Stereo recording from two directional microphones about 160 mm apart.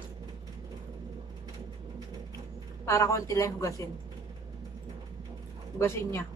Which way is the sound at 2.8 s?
20° left (ahead or behind).